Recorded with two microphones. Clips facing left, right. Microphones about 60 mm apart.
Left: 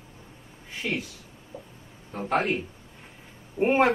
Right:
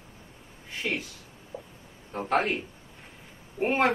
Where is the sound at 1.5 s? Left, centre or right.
Centre.